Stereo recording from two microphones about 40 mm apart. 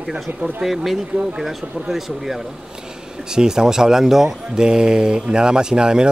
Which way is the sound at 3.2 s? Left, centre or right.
Centre.